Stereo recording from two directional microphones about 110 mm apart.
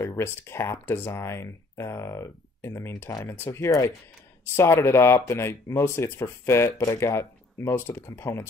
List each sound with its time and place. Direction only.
0.0 s speech: 25° left (ahead or behind)